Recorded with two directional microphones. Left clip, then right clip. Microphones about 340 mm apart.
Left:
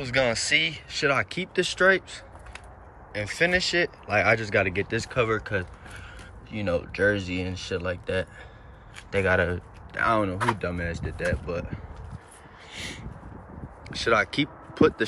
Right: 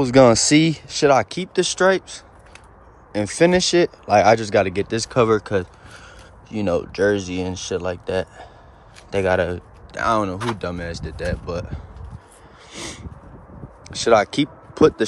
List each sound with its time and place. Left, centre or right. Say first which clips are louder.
0.0 s speech: right 11 dB; centre
12.7 s a sound: right 3 dB; centre
13.8 s speech: right 7 dB; centre